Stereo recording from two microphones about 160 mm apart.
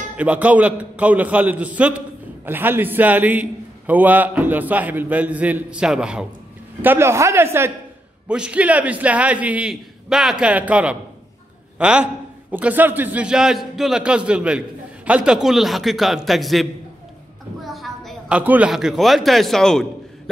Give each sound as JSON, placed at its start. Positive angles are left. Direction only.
{"t": 0.2, "sound": "a man's voice", "side_deg": -10}
{"t": 17.6, "sound": "a sound", "side_deg": 0}
{"t": 18.4, "sound": "a man's voice", "side_deg": -10}